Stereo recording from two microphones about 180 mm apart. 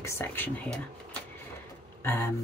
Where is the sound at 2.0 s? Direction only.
15° left (ahead or behind).